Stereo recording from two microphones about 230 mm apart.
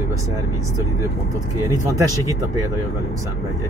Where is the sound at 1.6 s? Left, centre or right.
Centre.